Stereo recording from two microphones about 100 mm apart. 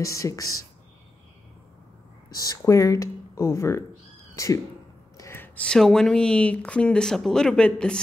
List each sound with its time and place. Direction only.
0.0 s speech: 35° left (ahead or behind)
2.3 s speech: 40° left (ahead or behind)
5.1 s a sound: 35° left (ahead or behind)
5.4 s speech: 10° left (ahead or behind)